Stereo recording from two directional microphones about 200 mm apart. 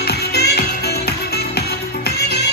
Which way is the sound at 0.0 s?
50° left (ahead or behind).